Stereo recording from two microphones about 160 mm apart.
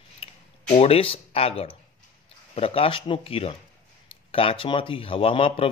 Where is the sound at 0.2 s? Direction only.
40° left (ahead or behind).